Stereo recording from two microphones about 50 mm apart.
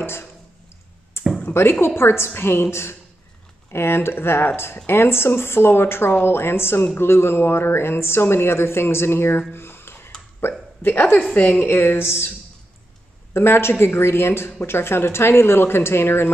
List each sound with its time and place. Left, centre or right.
0.0 s a sound: left
1.5 s a woman's voice: left
9.5 s a sound: left
10.4 s a woman's voice: left
10.8 s a woman's voice: left
11.6 s speech: left
13.3 s speech: left